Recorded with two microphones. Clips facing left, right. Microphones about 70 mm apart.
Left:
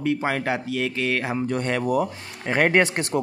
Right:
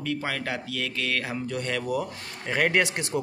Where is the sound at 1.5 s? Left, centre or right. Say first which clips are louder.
Left 5 dB; left.